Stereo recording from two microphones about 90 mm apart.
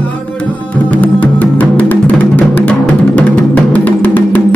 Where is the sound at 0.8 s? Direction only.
15° left (ahead or behind).